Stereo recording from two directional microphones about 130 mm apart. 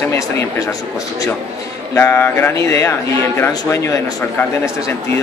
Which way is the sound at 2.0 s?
20° left (ahead or behind).